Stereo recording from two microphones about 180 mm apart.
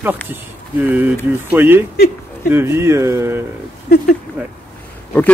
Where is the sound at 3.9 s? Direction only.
60° left (ahead or behind).